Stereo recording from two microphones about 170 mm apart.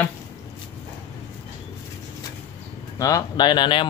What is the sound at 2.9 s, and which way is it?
Speech, 20° left (ahead or behind).